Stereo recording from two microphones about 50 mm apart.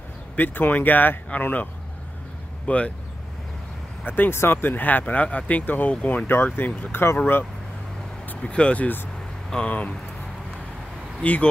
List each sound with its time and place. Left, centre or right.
0.4 s speech: left
4.0 s speech: left
8.4 s speech: left
11.2 s speech: left